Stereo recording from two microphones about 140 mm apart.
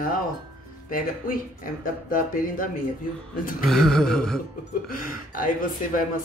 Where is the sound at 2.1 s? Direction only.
75° left (ahead or behind).